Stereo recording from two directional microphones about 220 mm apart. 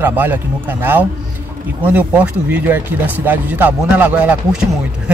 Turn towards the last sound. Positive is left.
turn(degrees=-5)  # may be behind; listen again after turning